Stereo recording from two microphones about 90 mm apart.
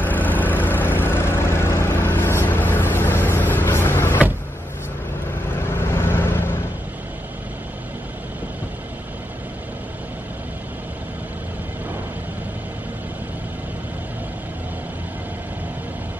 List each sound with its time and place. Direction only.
0.0 s vehicle: 20° left (ahead or behind)
5.7 s vehicle: 25° left (ahead or behind)